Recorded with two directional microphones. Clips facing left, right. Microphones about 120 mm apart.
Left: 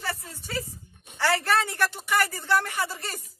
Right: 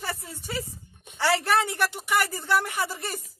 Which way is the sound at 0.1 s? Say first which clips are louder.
Even; 15° right (ahead or behind).